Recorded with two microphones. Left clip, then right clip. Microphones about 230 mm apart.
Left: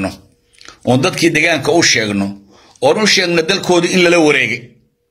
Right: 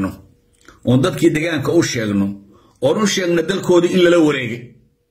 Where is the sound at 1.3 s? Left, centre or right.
Centre.